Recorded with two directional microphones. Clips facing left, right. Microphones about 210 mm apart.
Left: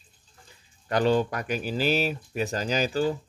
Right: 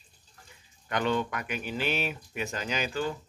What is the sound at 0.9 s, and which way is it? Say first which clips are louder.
Speech: left 6 dB; 35° left (ahead or behind).